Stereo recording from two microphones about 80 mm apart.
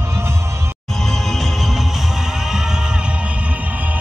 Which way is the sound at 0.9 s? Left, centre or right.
Centre.